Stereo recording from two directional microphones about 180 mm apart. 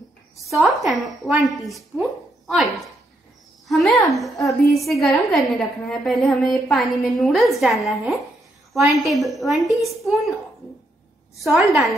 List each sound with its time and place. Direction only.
0.5 s a woman's voice: centre (ahead or behind)
11.4 s a woman's voice: centre (ahead or behind)